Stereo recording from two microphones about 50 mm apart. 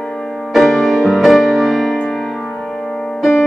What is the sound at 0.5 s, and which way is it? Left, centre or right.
Music, centre.